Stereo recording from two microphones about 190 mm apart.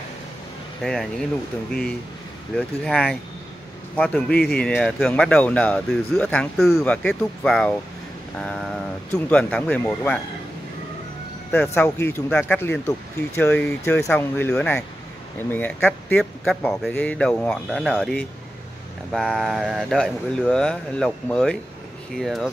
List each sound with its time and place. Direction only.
0.8 s speech: centre (ahead or behind)
2.5 s speech: 5° left (ahead or behind)
11.5 s speech: 10° left (ahead or behind)